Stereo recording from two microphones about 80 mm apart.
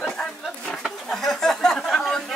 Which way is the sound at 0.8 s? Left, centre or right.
Centre.